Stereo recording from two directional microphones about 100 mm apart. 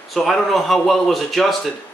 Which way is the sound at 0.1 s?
Centre (ahead or behind).